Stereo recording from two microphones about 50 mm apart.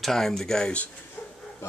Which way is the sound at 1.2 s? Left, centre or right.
Left.